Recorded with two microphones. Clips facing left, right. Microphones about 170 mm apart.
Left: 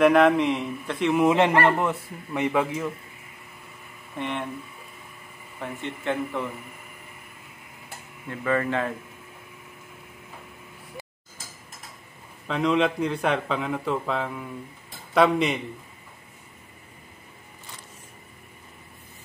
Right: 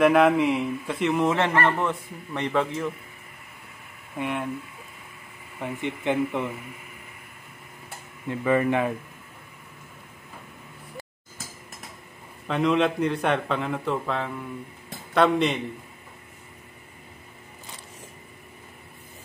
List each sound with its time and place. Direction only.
0.0 s a man's voice: centre (ahead or behind)
1.2 s a man's voice: 15° left (ahead or behind)
4.2 s a man's voice: 5° right (ahead or behind)
5.6 s speech: 15° right (ahead or behind)
8.3 s speech: 15° right (ahead or behind)
12.4 s a man's voice: centre (ahead or behind)